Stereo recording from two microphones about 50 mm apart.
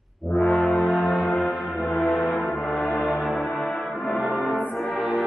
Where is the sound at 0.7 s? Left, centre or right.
Centre.